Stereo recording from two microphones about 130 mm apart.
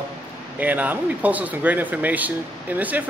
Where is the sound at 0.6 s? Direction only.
10° right (ahead or behind).